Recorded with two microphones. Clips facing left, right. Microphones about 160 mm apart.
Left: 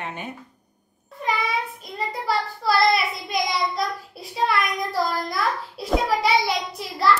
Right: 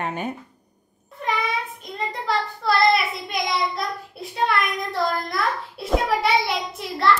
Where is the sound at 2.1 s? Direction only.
5° left (ahead or behind).